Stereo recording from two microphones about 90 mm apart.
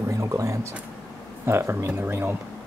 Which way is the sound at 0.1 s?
35° right (ahead or behind).